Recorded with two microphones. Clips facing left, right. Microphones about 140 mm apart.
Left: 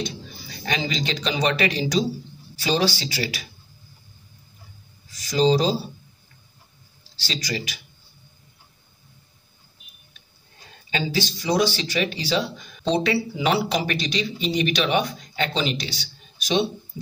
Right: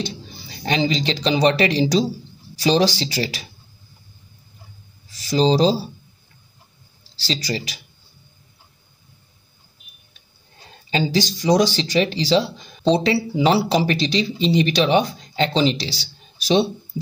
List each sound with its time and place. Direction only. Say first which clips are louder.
0.0 s speech: right 2 dB; 30° right (ahead or behind)
5.1 s speech: right 2 dB; 30° right (ahead or behind)
7.2 s speech: right 4 dB; 35° right (ahead or behind)
10.9 s speech: right 5 dB; 35° right (ahead or behind)